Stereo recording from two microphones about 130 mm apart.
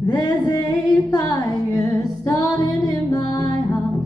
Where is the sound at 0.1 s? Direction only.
30° left (ahead or behind).